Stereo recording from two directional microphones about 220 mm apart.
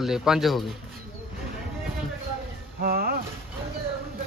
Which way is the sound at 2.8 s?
45° right (ahead or behind).